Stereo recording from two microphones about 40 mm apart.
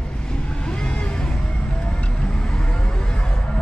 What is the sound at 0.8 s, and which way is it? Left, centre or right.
Music, left.